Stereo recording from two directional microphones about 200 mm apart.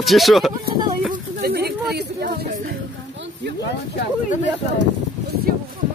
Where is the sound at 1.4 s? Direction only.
50° right (ahead or behind).